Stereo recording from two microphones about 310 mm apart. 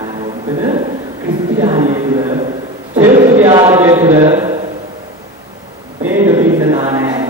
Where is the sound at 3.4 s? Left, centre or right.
Centre.